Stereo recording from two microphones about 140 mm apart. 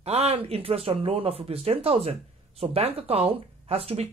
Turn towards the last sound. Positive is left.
turn(degrees=-45)  # may be behind; listen again after turning